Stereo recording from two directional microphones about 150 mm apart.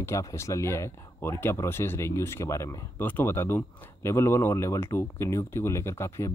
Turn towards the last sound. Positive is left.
turn(degrees=20)  # may be behind; listen again after turning